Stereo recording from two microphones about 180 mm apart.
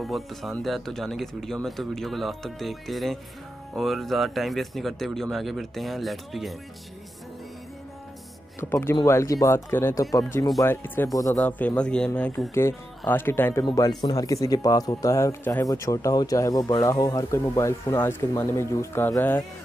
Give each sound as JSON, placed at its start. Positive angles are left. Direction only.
{"t": 0.0, "sound": "speech", "side_deg": 0}
{"t": 8.5, "sound": "speech", "side_deg": 15}